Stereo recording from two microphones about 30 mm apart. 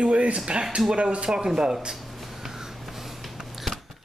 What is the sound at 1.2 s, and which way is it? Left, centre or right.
Speech, right.